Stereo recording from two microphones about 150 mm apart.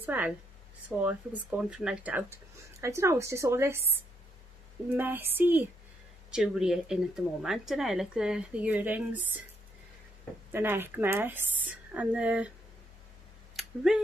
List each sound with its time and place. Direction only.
0.0 s a woman's voice: 10° right (ahead or behind)
4.9 s a woman's voice: 15° right (ahead or behind)
10.5 s a woman's voice: 15° right (ahead or behind)
13.6 s a sound: 5° right (ahead or behind)